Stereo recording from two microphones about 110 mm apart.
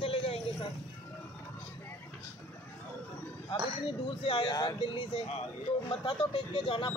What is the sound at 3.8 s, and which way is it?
Speech, 50° left (ahead or behind).